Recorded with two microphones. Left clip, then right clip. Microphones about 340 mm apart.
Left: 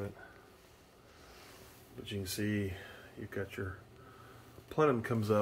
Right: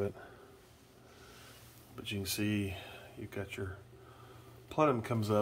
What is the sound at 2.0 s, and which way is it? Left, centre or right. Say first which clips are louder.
Speech: right 2 dB; centre.